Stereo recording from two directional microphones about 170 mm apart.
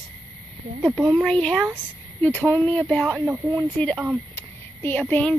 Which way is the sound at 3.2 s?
15° right (ahead or behind).